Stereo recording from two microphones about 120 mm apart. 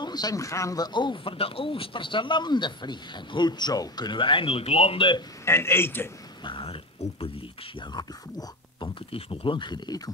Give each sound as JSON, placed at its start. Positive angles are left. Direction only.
{"t": 0.0, "sound": "speech", "side_deg": 35}
{"t": 0.9, "sound": "speech", "side_deg": 40}
{"t": 5.4, "sound": "a man's voice", "side_deg": 20}
{"t": 6.4, "sound": "speech", "side_deg": 45}
{"t": 9.1, "sound": "speech", "side_deg": 50}